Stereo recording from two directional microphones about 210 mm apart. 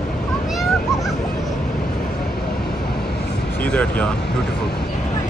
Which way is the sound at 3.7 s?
5° left (ahead or behind).